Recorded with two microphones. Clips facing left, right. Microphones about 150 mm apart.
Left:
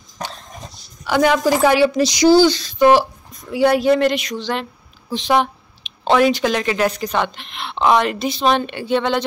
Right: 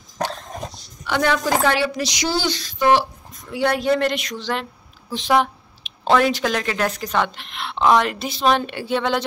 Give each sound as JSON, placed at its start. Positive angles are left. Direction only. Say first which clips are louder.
{"t": 1.0, "sound": "a woman's voice", "louder": "left 5 dB", "side_deg": 10}
{"t": 2.0, "sound": "speech", "louder": "left 12 dB", "side_deg": 35}
{"t": 2.6, "sound": "a woman's voice", "louder": "left 4 dB", "side_deg": 15}